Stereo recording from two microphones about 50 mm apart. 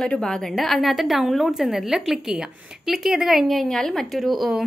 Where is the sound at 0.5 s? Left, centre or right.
Centre.